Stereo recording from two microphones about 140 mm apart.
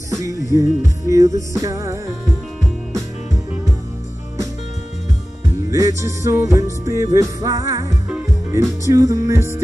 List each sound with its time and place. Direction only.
0.2 s music: 25° right (ahead or behind)
5.7 s music: 25° right (ahead or behind)